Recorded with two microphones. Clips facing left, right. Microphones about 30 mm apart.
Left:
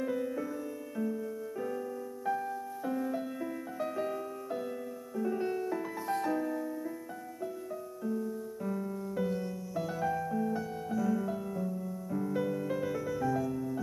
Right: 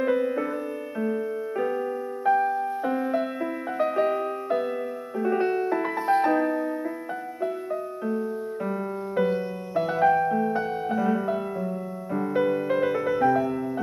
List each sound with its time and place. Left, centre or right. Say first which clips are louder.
0.0 s music: right 10 dB; right
8.0 s music: right 4 dB; right